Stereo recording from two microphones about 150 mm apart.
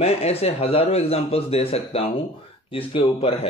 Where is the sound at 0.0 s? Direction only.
45° left (ahead or behind).